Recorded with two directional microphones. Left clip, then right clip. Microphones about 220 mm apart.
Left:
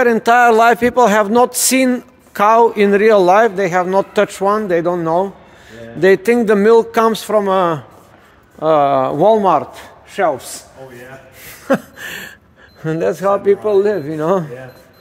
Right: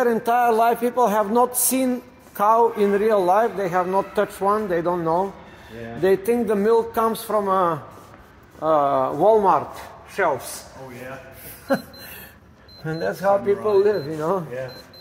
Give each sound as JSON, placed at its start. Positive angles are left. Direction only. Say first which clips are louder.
{"t": 0.0, "sound": "speech", "louder": "left 8 dB", "side_deg": 50}
{"t": 11.6, "sound": "a sound", "louder": "left 7 dB", "side_deg": 55}
{"t": 12.8, "sound": "speech", "louder": "left 6 dB", "side_deg": 55}